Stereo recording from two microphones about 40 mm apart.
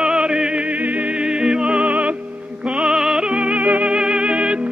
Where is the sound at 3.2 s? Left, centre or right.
Right.